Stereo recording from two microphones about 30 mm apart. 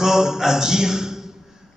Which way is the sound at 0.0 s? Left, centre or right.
Centre.